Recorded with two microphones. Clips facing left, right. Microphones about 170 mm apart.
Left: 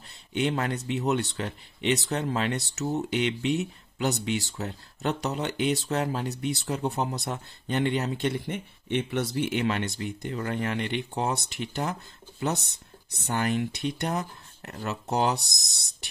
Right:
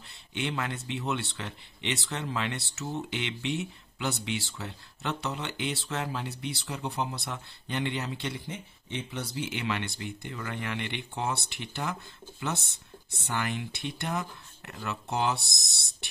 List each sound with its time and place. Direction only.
0.4 s speech: 40° left (ahead or behind)